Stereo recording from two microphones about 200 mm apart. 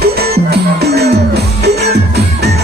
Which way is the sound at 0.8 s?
55° right (ahead or behind).